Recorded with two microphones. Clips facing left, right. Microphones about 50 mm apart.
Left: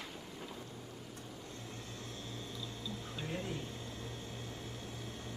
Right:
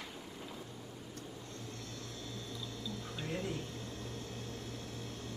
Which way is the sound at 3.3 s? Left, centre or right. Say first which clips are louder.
Right 2 dB; left.